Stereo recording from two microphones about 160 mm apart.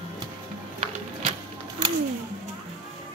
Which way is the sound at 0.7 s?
40° right (ahead or behind).